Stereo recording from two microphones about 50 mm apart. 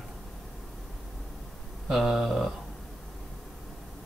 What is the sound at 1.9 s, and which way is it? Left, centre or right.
Speech, centre.